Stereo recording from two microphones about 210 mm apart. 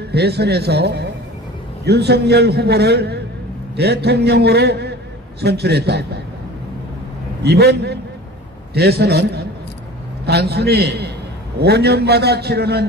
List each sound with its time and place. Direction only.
0.1 s a man's voice: 50° right (ahead or behind)
7.4 s a man's voice: 50° right (ahead or behind)